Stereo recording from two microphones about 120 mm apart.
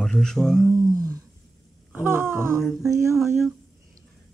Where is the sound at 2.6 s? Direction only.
Centre (ahead or behind).